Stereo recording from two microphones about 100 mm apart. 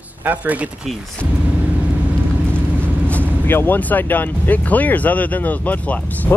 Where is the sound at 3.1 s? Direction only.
15° left (ahead or behind).